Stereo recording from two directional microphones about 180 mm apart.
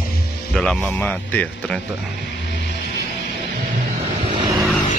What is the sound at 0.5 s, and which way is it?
Speech, 5° left (ahead or behind).